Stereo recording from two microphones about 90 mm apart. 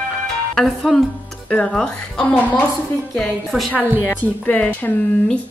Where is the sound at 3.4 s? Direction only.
Centre (ahead or behind).